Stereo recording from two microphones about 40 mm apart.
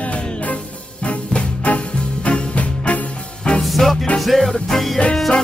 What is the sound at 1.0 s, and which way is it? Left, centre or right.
Music, left.